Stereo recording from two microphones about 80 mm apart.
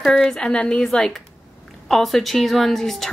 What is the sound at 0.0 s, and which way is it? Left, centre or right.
Speech, centre.